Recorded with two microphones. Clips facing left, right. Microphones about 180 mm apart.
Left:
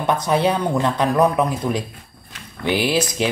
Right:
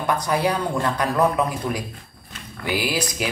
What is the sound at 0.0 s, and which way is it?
Speech, 25° left (ahead or behind).